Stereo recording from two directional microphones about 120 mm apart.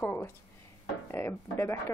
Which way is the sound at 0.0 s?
20° left (ahead or behind).